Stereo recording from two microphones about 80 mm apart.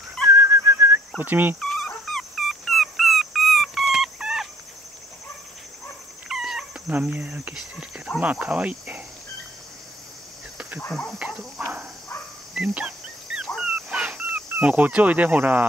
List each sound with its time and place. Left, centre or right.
0.3 s whistling: right
1.1 s speech: right
1.6 s dog: centre
6.2 s dog: centre
6.9 s speech: centre
10.9 s cricket: centre
11.1 s speech: centre
12.8 s dog: centre
14.6 s speech: centre